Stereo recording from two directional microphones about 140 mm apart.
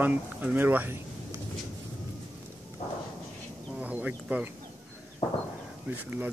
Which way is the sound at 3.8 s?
10° right (ahead or behind).